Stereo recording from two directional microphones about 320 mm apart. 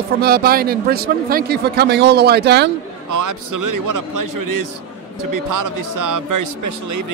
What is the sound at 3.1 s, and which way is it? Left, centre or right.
A man's voice, right.